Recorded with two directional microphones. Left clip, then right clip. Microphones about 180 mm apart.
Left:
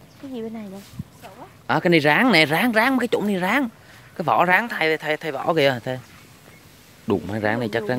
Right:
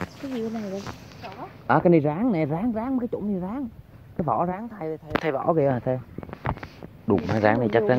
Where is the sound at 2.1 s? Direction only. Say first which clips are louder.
Left 9 dB; 50° left (ahead or behind); by 6.0 s 30° left (ahead or behind).